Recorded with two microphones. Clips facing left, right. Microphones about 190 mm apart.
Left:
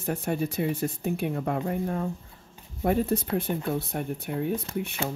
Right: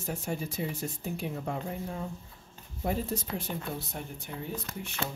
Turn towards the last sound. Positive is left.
turn(degrees=60)  # may be behind; listen again after turning